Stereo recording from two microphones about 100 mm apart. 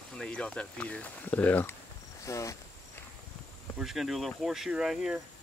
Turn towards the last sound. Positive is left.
turn(degrees=-5)  # may be behind; listen again after turning